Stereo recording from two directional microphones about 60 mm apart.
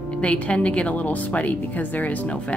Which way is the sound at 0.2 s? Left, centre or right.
Left.